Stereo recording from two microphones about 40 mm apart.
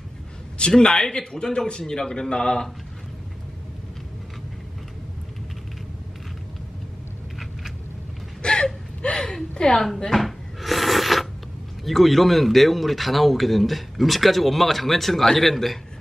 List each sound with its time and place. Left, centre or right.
0.6 s a man's voice: left
8.4 s gasp: left
9.6 s speech: left
10.1 s cupboard open or close: centre
11.8 s a man's voice: centre